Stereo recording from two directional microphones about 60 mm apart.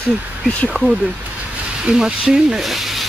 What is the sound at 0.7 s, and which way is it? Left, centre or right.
Speech, centre.